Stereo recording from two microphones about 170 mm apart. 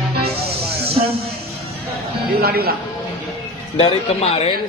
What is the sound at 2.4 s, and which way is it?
Music, 65° right (ahead or behind).